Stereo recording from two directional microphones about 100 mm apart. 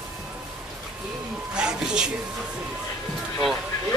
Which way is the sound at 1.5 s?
5° right (ahead or behind).